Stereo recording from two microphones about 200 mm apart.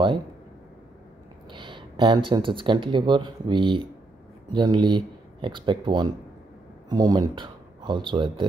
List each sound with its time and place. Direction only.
1.5 s speech: 25° right (ahead or behind)